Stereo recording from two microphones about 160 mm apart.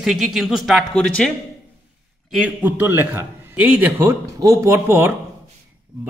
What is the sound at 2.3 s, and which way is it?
A man's voice, 10° right (ahead or behind).